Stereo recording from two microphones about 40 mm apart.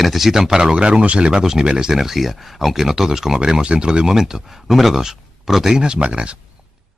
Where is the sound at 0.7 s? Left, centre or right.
Right.